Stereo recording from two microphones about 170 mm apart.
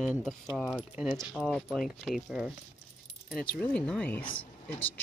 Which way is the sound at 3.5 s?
5° left (ahead or behind).